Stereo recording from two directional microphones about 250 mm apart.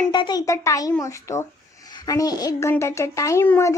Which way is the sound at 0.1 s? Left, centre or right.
Centre.